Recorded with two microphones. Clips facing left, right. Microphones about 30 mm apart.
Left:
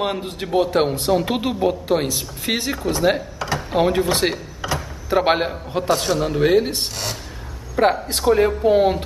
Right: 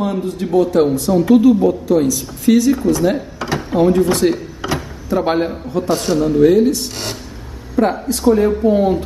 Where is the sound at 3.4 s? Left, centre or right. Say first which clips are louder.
Right 3 dB; centre.